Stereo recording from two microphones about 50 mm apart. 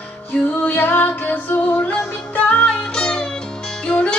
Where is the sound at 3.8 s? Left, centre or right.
Left.